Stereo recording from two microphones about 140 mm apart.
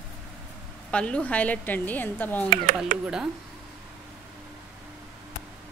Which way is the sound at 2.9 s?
75° right (ahead or behind).